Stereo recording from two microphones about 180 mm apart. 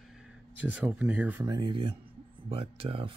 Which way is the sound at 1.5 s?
25° right (ahead or behind).